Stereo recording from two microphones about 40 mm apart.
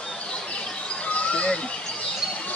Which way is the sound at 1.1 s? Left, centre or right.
Left.